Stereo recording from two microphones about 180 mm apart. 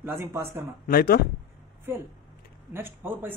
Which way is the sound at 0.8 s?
55° left (ahead or behind).